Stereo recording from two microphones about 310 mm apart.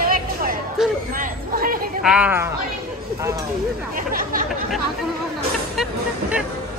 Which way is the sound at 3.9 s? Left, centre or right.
Right.